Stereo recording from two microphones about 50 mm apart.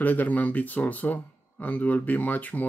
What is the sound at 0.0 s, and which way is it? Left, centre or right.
Speech, left.